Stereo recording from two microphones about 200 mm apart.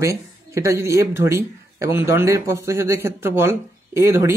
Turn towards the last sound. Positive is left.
turn(degrees=-15)  # may be behind; listen again after turning